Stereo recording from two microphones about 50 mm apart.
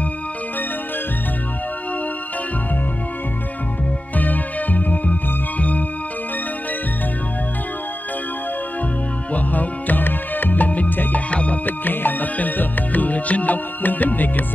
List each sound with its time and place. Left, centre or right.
4.2 s music: left
9.3 s music: left